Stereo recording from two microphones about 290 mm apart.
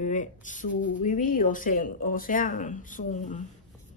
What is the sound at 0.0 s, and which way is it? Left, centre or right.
Speech, left.